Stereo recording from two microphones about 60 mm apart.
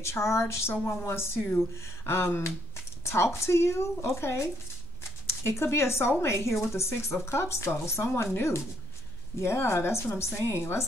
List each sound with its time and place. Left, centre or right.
0.0 s speech: left